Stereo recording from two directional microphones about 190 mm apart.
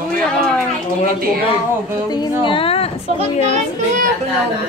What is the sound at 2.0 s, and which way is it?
Speech, 20° left (ahead or behind).